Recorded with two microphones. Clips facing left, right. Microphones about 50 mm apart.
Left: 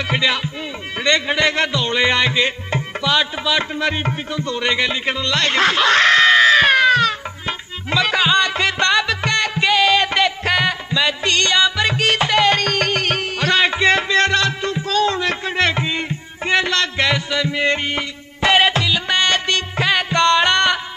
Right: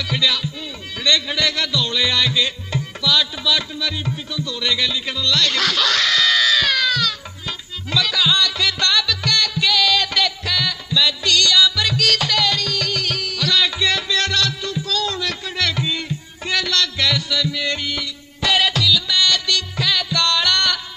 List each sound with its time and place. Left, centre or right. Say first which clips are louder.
0.1 s music: left 1 dB; left